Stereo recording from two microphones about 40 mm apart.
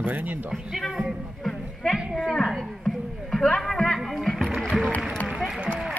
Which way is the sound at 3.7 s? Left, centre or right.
Centre.